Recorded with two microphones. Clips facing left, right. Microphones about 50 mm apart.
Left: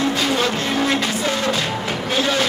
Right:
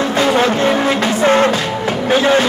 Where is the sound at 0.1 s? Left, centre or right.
Right.